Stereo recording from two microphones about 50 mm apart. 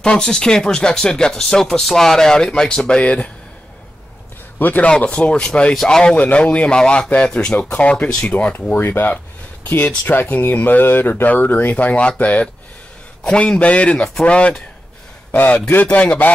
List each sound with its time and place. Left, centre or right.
0.2 s speech: centre; by 3.3 s left
4.6 s a man's voice: left
4.8 s speech: left
6.1 s speech: left
8.1 s speech: centre
8.7 s speech: left
11.7 s speech: left
15.3 s speech: left